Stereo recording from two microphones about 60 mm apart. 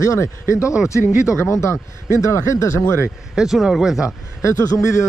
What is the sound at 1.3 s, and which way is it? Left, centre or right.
Speech, left.